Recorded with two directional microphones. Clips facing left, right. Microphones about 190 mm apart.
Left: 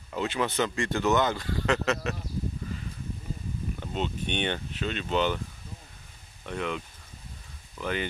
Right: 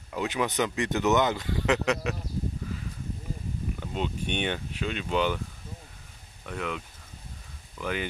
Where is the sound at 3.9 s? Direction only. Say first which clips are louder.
Even; 10° right (ahead or behind).